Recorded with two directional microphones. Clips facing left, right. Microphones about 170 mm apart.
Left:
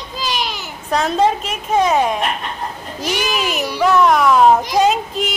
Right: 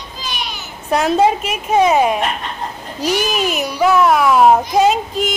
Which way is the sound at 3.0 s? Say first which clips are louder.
Right 3 dB; 40° right (ahead or behind).